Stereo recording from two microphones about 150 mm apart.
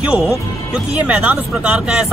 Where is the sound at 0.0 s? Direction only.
10° right (ahead or behind).